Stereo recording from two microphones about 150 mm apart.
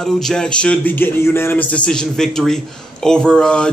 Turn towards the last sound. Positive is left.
turn(degrees=5)  # may be behind; listen again after turning